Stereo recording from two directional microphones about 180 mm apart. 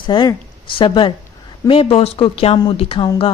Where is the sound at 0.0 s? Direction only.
25° left (ahead or behind).